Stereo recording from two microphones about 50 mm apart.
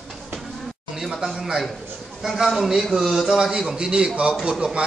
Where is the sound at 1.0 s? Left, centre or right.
Centre.